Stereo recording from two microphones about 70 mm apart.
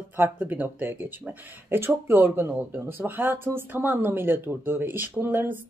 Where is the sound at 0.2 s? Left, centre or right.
Right.